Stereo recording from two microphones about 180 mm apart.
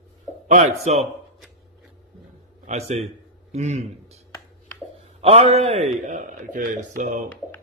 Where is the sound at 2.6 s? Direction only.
40° right (ahead or behind).